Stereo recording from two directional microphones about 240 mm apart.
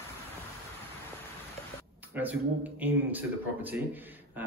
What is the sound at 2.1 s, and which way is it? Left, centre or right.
Speech, centre.